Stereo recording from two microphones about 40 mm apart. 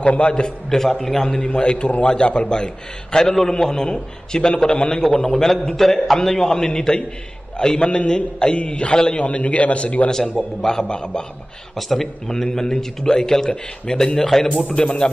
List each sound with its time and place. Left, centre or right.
0.0 s a man's voice: left
0.7 s speech: centre
1.5 s a man's voice: left
5.0 s a man's voice: centre
9.2 s a man's voice: left
10.0 s a man's voice: centre
11.7 s speech: centre
14.7 s a man's voice: left